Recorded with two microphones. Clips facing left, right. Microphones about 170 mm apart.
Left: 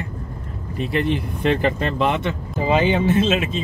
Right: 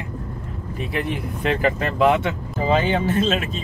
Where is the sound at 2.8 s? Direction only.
45° right (ahead or behind).